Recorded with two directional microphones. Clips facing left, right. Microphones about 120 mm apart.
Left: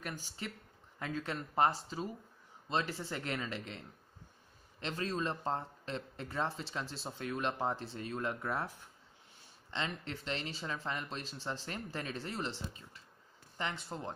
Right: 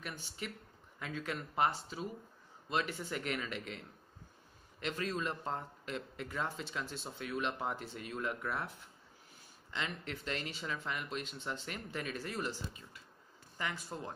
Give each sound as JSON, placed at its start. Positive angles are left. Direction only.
{"t": 0.0, "sound": "speech", "side_deg": 35}